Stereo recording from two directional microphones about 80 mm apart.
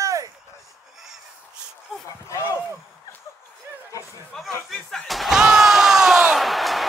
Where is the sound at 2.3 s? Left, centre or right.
Left.